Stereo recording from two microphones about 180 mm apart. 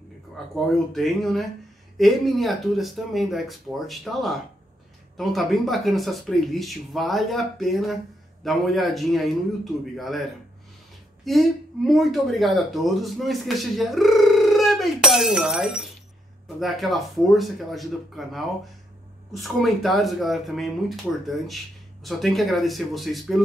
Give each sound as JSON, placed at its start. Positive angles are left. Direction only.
{"t": 0.9, "sound": "speech", "side_deg": 0}
{"t": 11.2, "sound": "speech", "side_deg": 0}
{"t": 22.0, "sound": "speech", "side_deg": 0}